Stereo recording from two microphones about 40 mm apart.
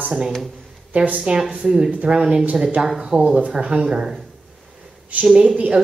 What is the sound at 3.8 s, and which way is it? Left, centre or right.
Speech, centre.